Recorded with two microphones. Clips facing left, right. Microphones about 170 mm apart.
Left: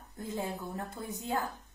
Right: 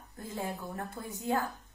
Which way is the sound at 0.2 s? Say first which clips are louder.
Left 1 dB; 20° left (ahead or behind).